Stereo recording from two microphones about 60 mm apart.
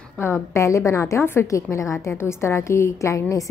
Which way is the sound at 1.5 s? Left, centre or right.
Left.